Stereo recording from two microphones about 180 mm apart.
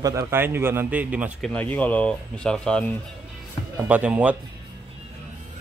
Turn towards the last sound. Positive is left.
turn(degrees=-5)  # may be behind; listen again after turning